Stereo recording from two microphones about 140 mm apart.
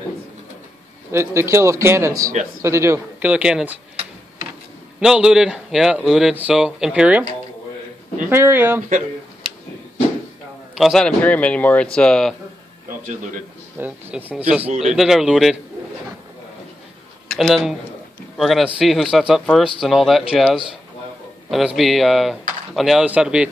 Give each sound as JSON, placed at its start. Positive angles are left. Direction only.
{"t": 1.1, "sound": "a man's voice", "side_deg": -20}
{"t": 3.9, "sound": "printer", "side_deg": -50}
{"t": 5.0, "sound": "speech", "side_deg": -5}
{"t": 8.3, "sound": "speech", "side_deg": -15}
{"t": 10.8, "sound": "speech", "side_deg": 0}
{"t": 13.8, "sound": "speech", "side_deg": -15}
{"t": 17.3, "sound": "speech", "side_deg": 0}
{"t": 21.5, "sound": "speech", "side_deg": 0}